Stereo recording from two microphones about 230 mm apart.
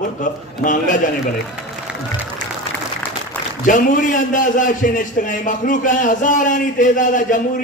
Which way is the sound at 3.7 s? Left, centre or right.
Left.